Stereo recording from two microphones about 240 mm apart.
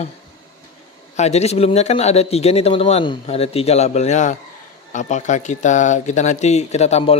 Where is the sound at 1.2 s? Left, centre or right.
Left.